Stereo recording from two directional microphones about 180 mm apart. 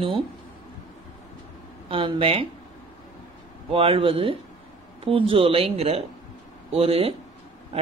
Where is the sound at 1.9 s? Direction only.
30° right (ahead or behind).